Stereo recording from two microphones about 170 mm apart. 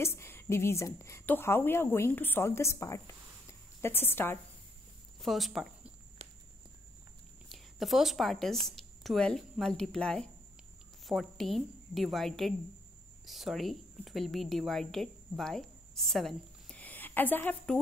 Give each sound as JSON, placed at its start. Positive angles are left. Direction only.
{"t": 0.0, "sound": "a woman's voice", "side_deg": 15}
{"t": 5.2, "sound": "speech", "side_deg": 0}
{"t": 6.2, "sound": "walk", "side_deg": -35}
{"t": 7.4, "sound": "a woman's voice", "side_deg": 0}